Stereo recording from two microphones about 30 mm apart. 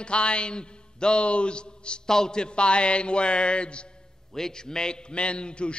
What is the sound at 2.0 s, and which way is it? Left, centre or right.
A man's voice, centre.